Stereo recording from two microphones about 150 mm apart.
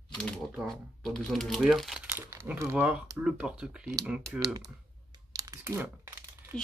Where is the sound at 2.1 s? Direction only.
15° right (ahead or behind).